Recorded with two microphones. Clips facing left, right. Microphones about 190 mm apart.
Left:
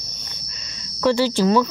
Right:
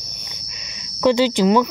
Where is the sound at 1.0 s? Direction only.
15° right (ahead or behind).